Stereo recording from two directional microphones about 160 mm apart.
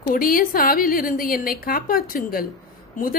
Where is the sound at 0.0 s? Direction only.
60° left (ahead or behind).